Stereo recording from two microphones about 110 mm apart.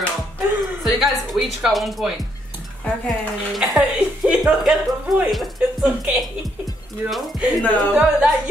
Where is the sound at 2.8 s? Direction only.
Centre (ahead or behind).